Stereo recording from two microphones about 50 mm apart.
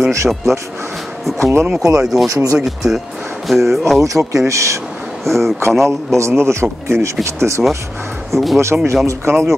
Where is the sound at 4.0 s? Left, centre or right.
Right.